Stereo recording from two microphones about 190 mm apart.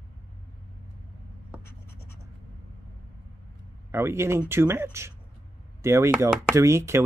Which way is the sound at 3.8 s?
15° right (ahead or behind).